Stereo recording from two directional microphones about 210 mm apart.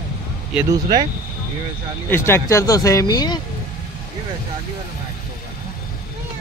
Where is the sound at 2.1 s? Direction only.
10° left (ahead or behind).